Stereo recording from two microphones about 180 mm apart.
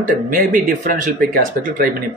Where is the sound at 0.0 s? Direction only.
50° right (ahead or behind).